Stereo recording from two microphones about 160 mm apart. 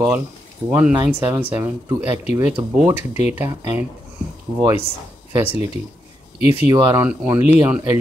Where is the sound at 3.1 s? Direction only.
45° left (ahead or behind).